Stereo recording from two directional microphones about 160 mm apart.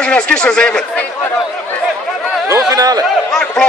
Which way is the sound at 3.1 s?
5° left (ahead or behind).